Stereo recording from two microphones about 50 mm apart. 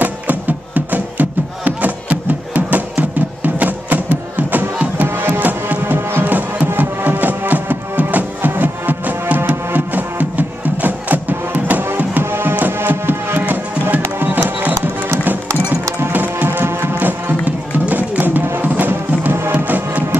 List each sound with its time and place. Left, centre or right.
0.0 s music: right
5.4 s music: right
6.2 s music: right
12.2 s music: right
16.4 s music: right
17.0 s music: right